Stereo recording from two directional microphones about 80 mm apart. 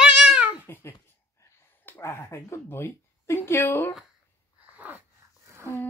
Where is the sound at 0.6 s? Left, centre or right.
Left.